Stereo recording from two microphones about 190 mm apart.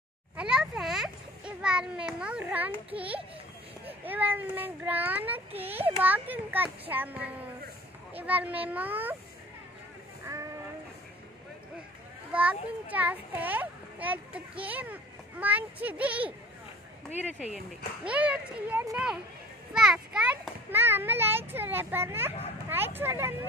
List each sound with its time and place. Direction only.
0.4 s children playing: 5° right (ahead or behind)
2.9 s a child's voice: 5° right (ahead or behind)
10.2 s a sound: 15° right (ahead or behind)
12.3 s a child's voice: 5° right (ahead or behind)
18.0 s a child's voice: 5° right (ahead or behind)